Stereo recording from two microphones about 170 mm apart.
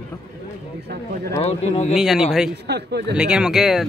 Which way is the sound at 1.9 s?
Centre (ahead or behind).